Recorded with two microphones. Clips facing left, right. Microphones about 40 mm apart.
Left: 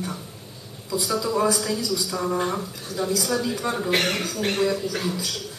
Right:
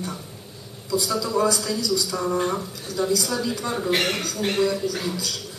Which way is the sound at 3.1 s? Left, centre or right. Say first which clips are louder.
Left 1 dB; centre.